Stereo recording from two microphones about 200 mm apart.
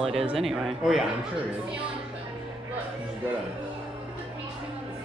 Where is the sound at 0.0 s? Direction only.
30° right (ahead or behind).